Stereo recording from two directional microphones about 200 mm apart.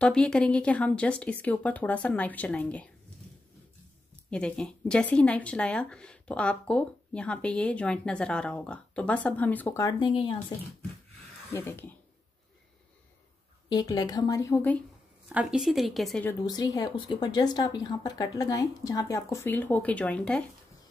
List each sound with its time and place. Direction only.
0.0 s speech: 5° left (ahead or behind)
4.3 s speech: 5° left (ahead or behind)
9.8 s speech: 25° left (ahead or behind)
11.5 s speech: 10° left (ahead or behind)
13.7 s speech: 20° left (ahead or behind)
15.2 s speech: 5° right (ahead or behind)
16.3 s speech: 20° left (ahead or behind)